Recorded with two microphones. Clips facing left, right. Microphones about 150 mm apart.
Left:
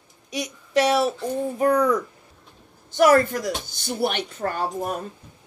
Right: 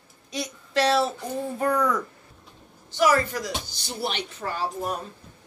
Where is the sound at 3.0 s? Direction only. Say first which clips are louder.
Left 5 dB; 50° left (ahead or behind).